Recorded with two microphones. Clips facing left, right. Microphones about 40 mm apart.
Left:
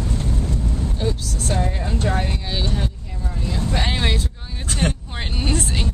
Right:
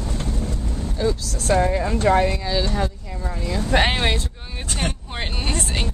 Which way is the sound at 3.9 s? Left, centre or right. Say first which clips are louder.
Right 1 dB; centre.